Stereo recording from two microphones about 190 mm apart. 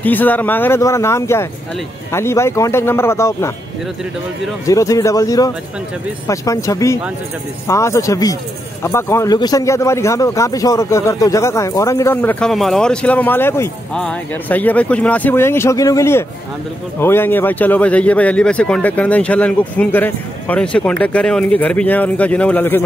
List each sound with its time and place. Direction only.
0.0 s a man's voice: 10° left (ahead or behind)
4.6 s a man's voice: 15° left (ahead or behind)